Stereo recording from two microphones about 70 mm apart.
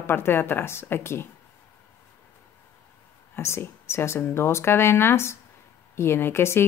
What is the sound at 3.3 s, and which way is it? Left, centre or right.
Speech, left.